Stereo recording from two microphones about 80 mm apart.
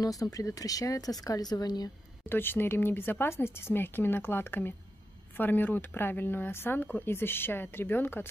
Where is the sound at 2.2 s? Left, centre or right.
Left.